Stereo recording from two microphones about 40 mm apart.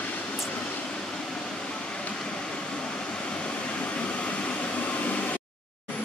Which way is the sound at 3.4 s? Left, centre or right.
Left.